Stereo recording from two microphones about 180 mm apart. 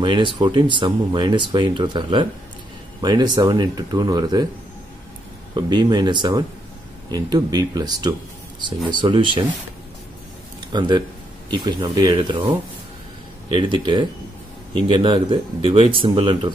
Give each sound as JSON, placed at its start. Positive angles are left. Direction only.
{"t": 0.0, "sound": "speech", "side_deg": -25}
{"t": 5.5, "sound": "speech", "side_deg": -25}
{"t": 10.7, "sound": "speech", "side_deg": -25}